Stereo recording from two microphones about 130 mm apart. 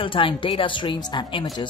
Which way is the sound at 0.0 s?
40° left (ahead or behind).